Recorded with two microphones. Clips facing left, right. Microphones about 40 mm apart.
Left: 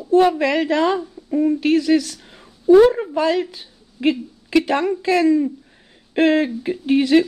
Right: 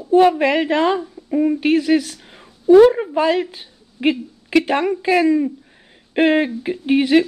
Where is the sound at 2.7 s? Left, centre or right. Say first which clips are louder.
Right 2 dB; centre.